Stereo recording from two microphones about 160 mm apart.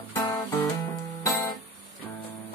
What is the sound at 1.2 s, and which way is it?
Music, 20° left (ahead or behind).